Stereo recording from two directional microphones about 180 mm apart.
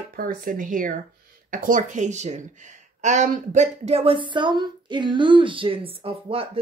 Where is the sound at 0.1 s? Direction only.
50° right (ahead or behind).